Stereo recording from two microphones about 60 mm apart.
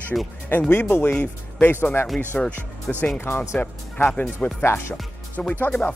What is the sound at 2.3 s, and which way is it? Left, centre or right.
Speech, centre.